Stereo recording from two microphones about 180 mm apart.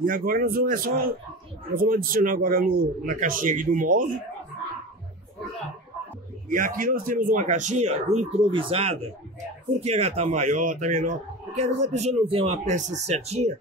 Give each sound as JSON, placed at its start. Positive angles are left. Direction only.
{"t": 0.0, "sound": "speech", "side_deg": -50}
{"t": 6.5, "sound": "speech", "side_deg": -50}